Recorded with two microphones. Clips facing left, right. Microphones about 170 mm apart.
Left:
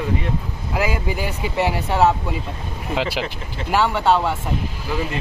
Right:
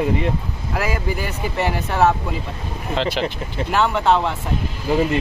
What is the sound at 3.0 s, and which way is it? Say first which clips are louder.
Speech: right 3 dB; 10° left (ahead or behind).